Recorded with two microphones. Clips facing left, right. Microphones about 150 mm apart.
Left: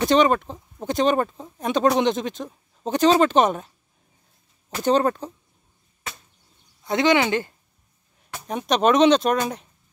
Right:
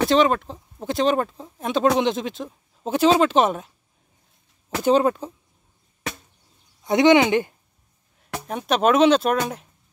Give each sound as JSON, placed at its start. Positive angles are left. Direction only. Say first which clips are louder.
{"t": 0.1, "sound": "speech", "louder": "left 4 dB", "side_deg": 0}
{"t": 4.8, "sound": "speech", "louder": "right 2 dB", "side_deg": -5}
{"t": 6.8, "sound": "speech", "louder": "right 4 dB", "side_deg": -20}
{"t": 8.5, "sound": "speech", "louder": "even", "side_deg": -5}